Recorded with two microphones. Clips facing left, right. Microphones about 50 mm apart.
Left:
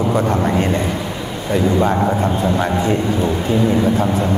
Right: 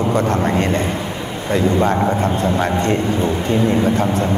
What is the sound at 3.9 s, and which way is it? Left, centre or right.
Speech, right.